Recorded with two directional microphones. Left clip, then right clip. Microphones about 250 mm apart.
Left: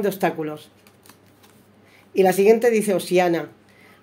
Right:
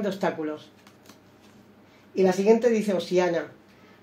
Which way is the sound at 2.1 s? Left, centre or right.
Left.